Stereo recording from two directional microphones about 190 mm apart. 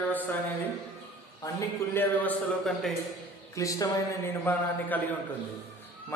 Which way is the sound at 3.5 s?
20° left (ahead or behind).